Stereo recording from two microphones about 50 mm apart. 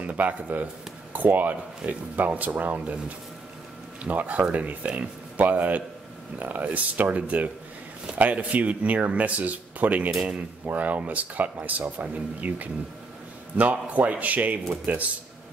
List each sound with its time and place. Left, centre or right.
0.0 s speech: right
4.0 s speech: right